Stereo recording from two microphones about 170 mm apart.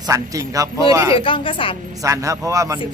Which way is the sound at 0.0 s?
20° right (ahead or behind).